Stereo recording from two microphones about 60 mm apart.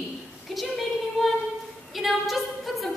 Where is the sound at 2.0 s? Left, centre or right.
Centre.